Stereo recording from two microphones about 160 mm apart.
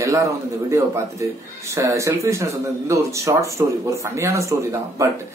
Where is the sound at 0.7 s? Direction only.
15° right (ahead or behind).